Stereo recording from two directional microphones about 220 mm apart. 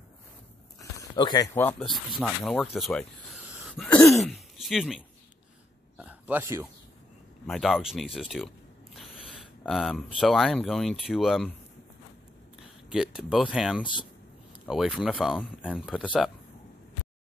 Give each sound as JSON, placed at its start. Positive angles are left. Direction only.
{"t": 0.7, "sound": "speech", "side_deg": 20}
{"t": 3.7, "sound": "throat clearing", "side_deg": 5}
{"t": 5.9, "sound": "speech", "side_deg": -5}
{"t": 8.9, "sound": "a sound", "side_deg": 0}
{"t": 10.1, "sound": "speech", "side_deg": 0}
{"t": 12.9, "sound": "speech", "side_deg": 0}